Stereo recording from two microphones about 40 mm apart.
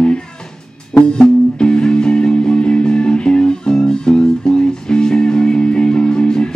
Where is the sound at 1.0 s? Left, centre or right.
Left.